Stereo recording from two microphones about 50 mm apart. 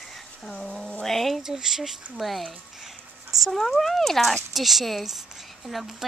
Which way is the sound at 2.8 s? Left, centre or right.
Centre.